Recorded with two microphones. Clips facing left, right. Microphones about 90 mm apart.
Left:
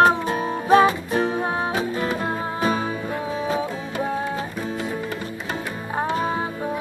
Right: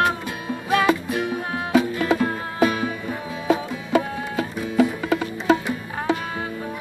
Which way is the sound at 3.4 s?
90° right.